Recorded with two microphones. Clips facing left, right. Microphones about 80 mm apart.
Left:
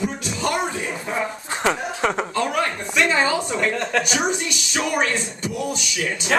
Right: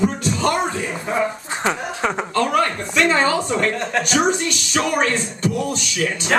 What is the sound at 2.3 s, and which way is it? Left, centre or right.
Speech, centre.